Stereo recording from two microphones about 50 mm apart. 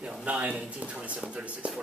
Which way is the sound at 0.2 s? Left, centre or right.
Right.